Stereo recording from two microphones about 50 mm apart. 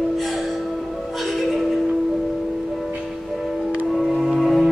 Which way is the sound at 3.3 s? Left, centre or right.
Centre.